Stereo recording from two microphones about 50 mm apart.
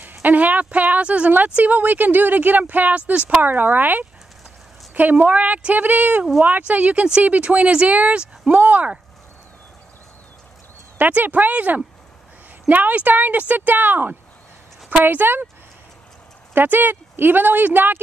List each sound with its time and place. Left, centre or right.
0.0 s speech: right
11.0 s speech: right
16.5 s speech: right